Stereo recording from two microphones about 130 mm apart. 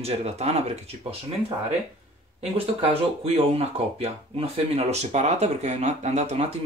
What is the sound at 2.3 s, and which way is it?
Speech, 50° right (ahead or behind).